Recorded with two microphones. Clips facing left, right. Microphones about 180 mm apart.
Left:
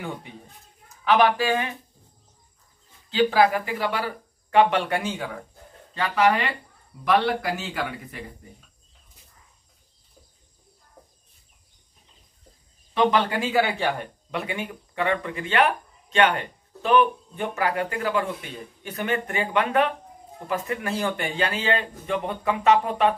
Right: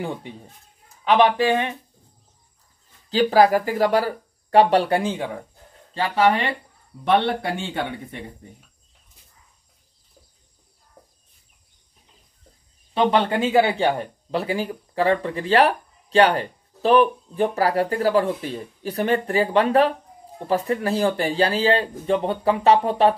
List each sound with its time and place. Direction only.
0.0 s speech: 30° right (ahead or behind)
3.1 s speech: 35° right (ahead or behind)
12.9 s speech: 30° right (ahead or behind)